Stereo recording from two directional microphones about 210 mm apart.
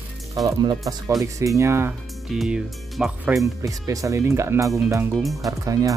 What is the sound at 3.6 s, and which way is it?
Speech, 15° right (ahead or behind).